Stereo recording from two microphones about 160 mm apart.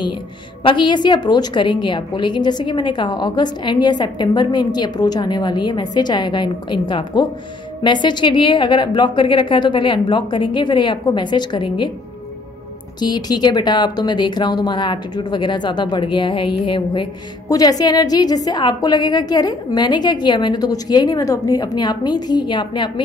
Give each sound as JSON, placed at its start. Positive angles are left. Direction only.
{"t": 0.7, "sound": "speech", "side_deg": 30}
{"t": 13.0, "sound": "speech", "side_deg": 25}